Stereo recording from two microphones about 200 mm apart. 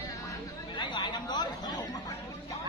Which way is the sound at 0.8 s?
20° left (ahead or behind).